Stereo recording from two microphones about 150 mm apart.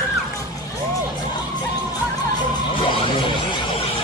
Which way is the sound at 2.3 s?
30° left (ahead or behind).